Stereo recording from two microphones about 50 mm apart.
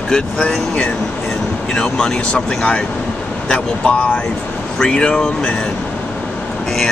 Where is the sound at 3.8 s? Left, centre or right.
Left.